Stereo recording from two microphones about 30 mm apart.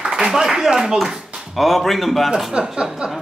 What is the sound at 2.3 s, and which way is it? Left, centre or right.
Speech, right.